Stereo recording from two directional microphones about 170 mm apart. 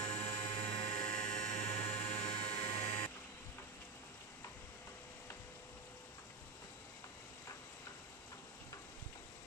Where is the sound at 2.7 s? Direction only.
35° left (ahead or behind).